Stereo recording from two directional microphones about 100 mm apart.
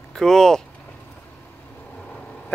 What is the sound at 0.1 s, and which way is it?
Speech, 5° left (ahead or behind).